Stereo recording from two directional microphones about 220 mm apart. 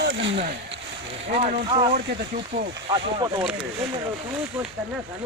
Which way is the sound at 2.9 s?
20° right (ahead or behind).